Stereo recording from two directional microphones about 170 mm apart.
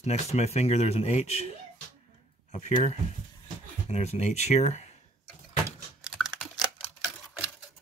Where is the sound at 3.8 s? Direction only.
40° left (ahead or behind).